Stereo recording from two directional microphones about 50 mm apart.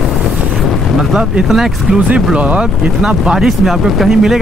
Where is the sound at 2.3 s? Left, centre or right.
Right.